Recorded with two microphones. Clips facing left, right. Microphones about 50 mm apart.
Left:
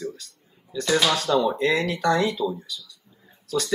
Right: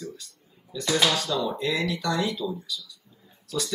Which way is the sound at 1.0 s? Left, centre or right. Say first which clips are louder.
Left 5 dB; left.